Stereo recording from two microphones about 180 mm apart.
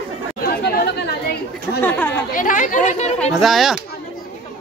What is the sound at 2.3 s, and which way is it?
Chatter, 45° left (ahead or behind).